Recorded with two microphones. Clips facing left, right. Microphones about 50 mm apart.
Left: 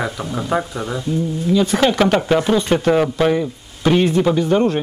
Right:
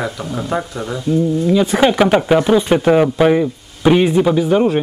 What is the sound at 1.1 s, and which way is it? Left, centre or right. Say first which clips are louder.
Speech: right 6 dB; centre.